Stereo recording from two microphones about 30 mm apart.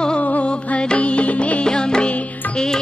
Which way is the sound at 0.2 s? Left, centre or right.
Left.